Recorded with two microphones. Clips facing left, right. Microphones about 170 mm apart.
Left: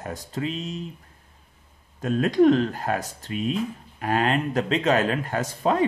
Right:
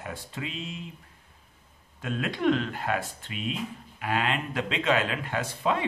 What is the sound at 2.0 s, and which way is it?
Speech, 40° left (ahead or behind).